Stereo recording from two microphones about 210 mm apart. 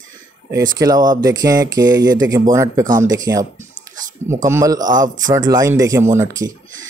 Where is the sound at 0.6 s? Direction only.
15° right (ahead or behind).